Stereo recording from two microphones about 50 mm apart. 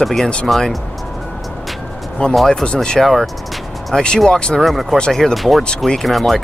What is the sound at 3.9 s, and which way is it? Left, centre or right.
Speech, centre.